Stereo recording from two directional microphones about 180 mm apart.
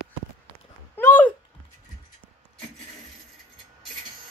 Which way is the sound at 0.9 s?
10° left (ahead or behind).